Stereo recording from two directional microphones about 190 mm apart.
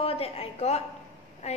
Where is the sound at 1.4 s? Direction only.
35° left (ahead or behind).